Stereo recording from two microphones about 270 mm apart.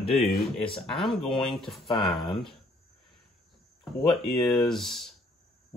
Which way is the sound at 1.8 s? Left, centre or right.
Centre.